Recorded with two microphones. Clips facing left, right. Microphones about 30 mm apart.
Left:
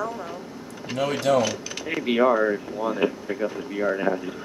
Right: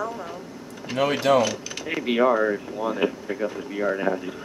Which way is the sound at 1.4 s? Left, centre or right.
Centre.